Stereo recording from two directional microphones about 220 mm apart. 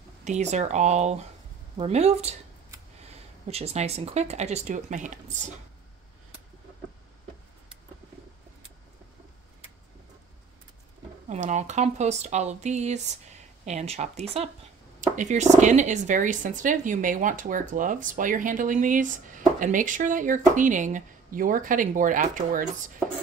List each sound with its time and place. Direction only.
0.2 s speech: 30° right (ahead or behind)
11.2 s speech: 35° right (ahead or behind)